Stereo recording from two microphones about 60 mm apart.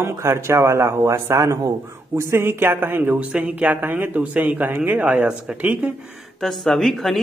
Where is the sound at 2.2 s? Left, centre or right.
Right.